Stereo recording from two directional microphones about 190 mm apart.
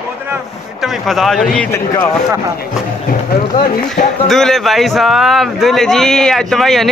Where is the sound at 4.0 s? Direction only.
40° left (ahead or behind).